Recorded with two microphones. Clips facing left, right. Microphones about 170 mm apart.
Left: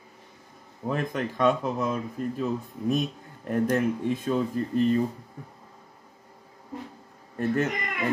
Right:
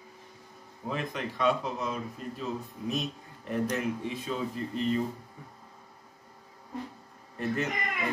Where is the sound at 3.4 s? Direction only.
50° left (ahead or behind).